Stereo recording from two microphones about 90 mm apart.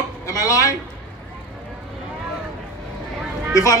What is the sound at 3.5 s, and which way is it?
Speech, 40° left (ahead or behind).